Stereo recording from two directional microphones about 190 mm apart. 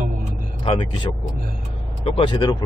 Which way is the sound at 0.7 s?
25° left (ahead or behind).